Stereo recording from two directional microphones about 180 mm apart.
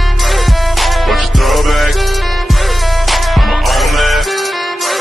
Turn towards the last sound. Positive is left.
turn(degrees=0)  # may be behind; listen again after turning